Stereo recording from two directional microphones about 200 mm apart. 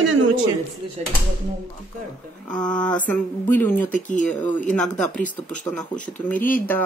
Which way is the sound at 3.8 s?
40° left (ahead or behind).